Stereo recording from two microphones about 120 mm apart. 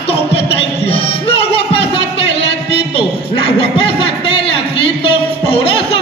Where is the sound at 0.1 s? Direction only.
50° left (ahead or behind).